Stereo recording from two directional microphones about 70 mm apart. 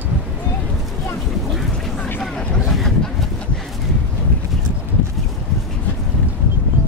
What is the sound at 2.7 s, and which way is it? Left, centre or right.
Boat, centre.